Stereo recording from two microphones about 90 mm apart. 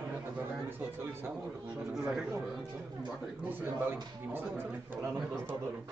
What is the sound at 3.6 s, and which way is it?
Speech, 20° right (ahead or behind).